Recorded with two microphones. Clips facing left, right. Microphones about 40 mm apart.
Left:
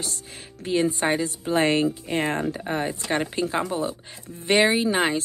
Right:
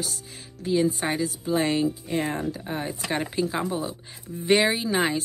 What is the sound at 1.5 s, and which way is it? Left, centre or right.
Speech, left.